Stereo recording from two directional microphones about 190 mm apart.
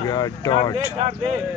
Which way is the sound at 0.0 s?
20° left (ahead or behind).